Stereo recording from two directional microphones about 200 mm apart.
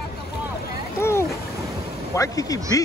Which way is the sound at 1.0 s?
15° left (ahead or behind).